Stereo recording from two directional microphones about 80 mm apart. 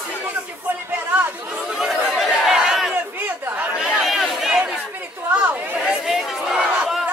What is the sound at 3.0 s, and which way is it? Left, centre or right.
Chatter, right.